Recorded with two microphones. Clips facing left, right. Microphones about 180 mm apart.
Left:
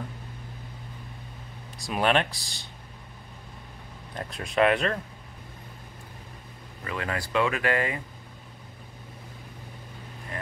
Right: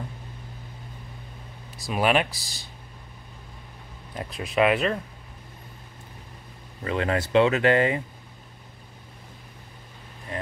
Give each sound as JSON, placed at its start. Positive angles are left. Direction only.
{"t": 1.8, "sound": "speech", "side_deg": -5}
{"t": 4.1, "sound": "speech", "side_deg": -5}
{"t": 6.8, "sound": "speech", "side_deg": -30}
{"t": 10.3, "sound": "vehicle", "side_deg": -25}